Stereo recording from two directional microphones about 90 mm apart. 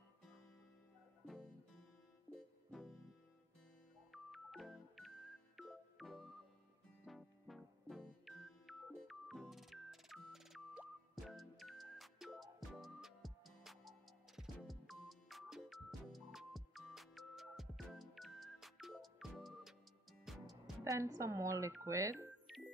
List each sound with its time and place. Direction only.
1.2 s music: centre (ahead or behind)
4.1 s music: centre (ahead or behind)
20.8 s speech: 40° right (ahead or behind)